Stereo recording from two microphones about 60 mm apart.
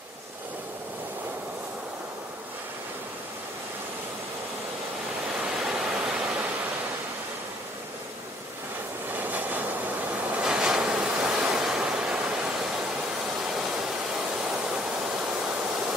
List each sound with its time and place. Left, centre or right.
5.7 s waterfall: centre
9.1 s vehicle: right
10.4 s waves: centre
13.5 s waterfall: centre